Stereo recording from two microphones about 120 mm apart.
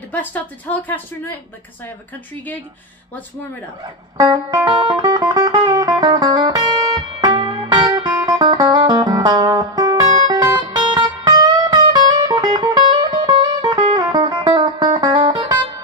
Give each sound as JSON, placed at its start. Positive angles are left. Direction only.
{"t": 0.1, "sound": "speech", "side_deg": 15}
{"t": 4.2, "sound": "music", "side_deg": -35}